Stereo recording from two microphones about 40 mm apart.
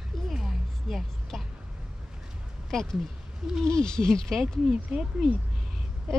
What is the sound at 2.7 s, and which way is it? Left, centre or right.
Speech, centre.